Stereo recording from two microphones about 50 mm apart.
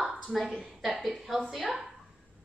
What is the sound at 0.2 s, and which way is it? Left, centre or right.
A woman's voice, centre.